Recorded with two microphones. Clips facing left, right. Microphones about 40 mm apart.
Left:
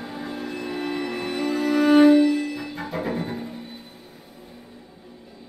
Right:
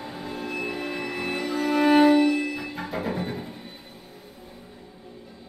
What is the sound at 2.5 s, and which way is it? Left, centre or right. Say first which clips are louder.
Music: left 1 dB; centre.